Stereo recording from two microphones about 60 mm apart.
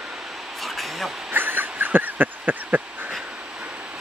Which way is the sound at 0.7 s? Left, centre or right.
Centre.